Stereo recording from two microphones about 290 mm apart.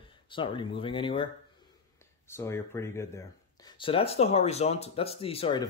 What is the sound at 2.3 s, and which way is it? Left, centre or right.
Speech, centre.